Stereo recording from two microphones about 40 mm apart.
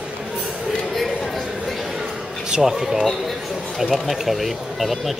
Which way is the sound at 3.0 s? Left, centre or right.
Centre.